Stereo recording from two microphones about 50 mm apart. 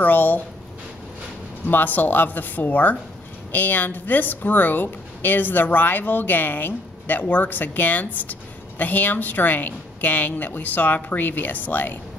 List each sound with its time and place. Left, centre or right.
0.0 s speech: left
1.7 s speech: left